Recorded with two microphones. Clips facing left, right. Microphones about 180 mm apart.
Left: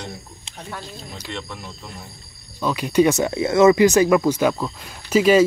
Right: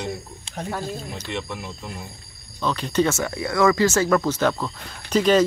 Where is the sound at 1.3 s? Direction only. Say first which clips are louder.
Right 3 dB; 10° right (ahead or behind).